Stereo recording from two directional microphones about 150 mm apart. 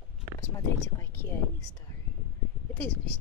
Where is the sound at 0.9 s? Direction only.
15° left (ahead or behind).